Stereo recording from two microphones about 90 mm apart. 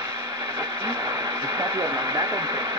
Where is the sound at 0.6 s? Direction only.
30° right (ahead or behind).